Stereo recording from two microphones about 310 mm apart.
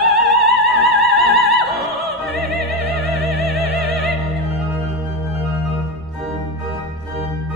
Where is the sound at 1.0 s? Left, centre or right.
Centre.